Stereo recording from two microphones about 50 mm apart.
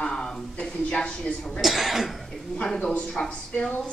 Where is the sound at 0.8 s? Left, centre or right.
Centre.